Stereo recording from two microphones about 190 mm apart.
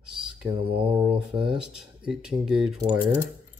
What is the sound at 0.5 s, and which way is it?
Mantra, 25° right (ahead or behind).